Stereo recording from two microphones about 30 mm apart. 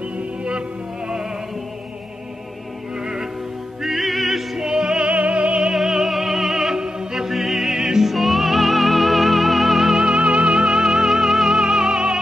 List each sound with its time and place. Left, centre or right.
0.4 s music: right
3.0 s music: right
3.8 s music: centre
4.6 s music: right
5.0 s music: right
5.8 s music: centre
8.1 s music: centre
9.9 s music: right
11.1 s music: centre
11.5 s music: right